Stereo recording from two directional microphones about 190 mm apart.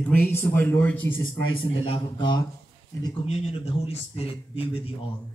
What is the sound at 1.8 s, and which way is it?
A man's voice, 25° left (ahead or behind).